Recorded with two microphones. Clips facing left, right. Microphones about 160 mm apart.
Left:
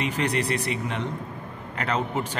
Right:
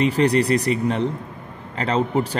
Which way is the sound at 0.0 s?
35° right (ahead or behind).